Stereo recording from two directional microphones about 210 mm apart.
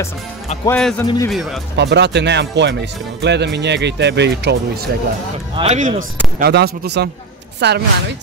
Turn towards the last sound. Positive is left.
turn(degrees=-50)  # may be behind; listen again after turning